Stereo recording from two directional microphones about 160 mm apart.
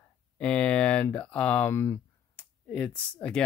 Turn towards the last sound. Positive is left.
turn(degrees=5)  # may be behind; listen again after turning